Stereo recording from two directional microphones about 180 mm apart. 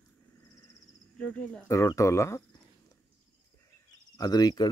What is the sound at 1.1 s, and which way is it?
Speech, 5° left (ahead or behind).